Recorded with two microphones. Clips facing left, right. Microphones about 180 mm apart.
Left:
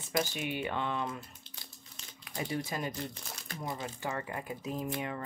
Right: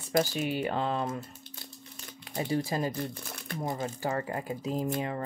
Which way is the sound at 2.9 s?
55° right (ahead or behind).